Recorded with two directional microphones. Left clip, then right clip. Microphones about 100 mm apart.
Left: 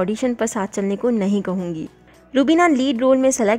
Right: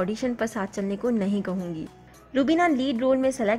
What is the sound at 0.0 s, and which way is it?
A woman's voice, 30° left (ahead or behind).